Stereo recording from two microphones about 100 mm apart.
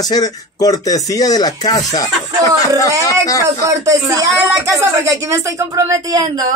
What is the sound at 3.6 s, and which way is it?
Speech, 35° right (ahead or behind).